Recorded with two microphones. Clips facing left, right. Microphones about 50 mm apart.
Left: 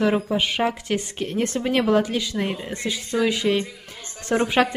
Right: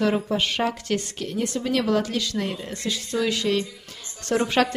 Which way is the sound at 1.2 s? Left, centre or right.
Left.